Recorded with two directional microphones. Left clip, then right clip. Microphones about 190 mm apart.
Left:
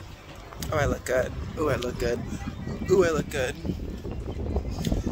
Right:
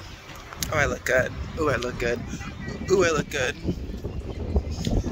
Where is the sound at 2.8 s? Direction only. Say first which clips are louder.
Right 1 dB; 5° left (ahead or behind).